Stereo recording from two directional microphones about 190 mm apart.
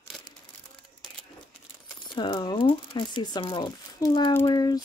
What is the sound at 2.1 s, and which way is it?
Speech, 25° left (ahead or behind).